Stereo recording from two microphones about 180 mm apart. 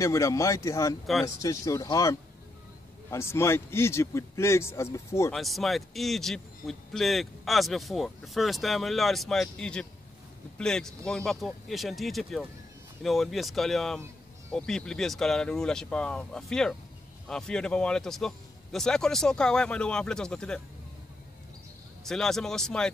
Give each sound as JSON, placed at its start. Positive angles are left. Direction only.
{"t": 0.0, "sound": "a man's voice", "side_deg": 15}
{"t": 5.3, "sound": "speech", "side_deg": 0}
{"t": 22.0, "sound": "speech", "side_deg": 0}